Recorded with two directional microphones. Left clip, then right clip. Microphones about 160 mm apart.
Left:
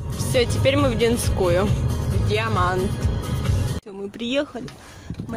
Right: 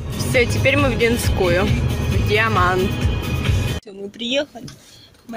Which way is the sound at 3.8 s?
30° left (ahead or behind).